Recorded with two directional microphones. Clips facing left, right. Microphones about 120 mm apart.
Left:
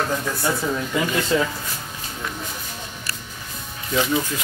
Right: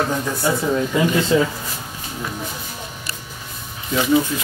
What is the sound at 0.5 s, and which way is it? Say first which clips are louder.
Speech: right 3 dB; 5° right (ahead or behind).